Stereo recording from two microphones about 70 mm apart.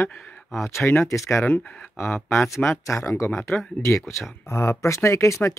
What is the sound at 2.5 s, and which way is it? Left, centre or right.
Speech, left.